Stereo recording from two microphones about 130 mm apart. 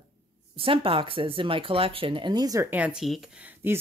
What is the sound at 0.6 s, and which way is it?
Speech, 45° right (ahead or behind).